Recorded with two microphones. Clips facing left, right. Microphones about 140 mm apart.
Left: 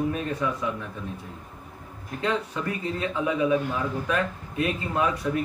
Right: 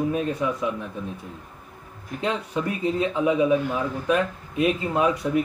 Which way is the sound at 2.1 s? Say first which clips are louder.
Right 1 dB; 15° right (ahead or behind).